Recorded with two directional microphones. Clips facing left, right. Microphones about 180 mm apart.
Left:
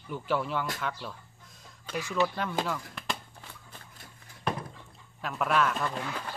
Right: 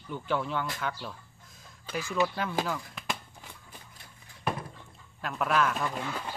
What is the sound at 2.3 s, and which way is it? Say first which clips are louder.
Speech: even; 5° right (ahead or behind).